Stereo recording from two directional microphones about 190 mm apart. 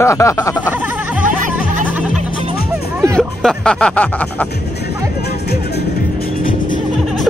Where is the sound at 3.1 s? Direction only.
5° left (ahead or behind).